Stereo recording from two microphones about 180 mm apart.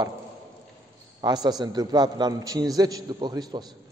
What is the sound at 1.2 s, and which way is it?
A man's voice, 20° right (ahead or behind).